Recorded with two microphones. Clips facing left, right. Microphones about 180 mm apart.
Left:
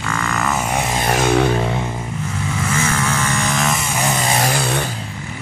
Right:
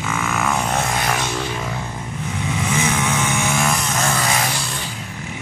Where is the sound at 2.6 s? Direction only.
10° right (ahead or behind).